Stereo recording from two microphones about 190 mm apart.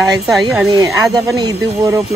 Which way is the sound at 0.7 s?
15° right (ahead or behind).